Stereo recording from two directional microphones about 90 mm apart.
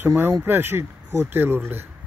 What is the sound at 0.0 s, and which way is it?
Speech, 25° right (ahead or behind).